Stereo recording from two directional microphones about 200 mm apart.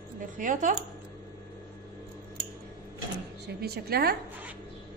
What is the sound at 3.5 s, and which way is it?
Speech, 55° right (ahead or behind).